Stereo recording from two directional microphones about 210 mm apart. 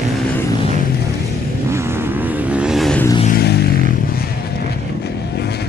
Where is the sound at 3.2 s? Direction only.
50° left (ahead or behind).